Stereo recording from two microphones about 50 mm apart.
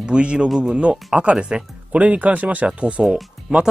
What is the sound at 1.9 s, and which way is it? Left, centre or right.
Speech, right.